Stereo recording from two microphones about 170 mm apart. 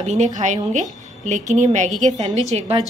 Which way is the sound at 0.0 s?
40° right (ahead or behind).